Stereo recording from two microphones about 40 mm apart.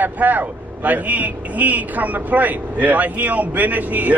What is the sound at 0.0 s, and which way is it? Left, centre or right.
A man's voice, right.